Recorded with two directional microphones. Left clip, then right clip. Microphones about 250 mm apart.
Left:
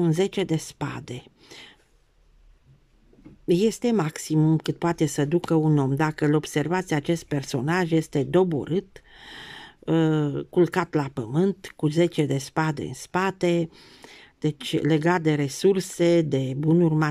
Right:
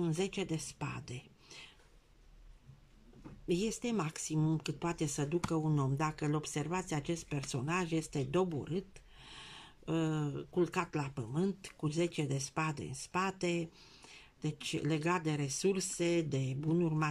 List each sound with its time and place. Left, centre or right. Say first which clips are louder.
0.0 s speech: left 13 dB; left
3.4 s speech: left 14 dB; left